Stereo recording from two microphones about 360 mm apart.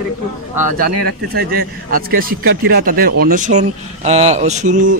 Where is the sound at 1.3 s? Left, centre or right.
Right.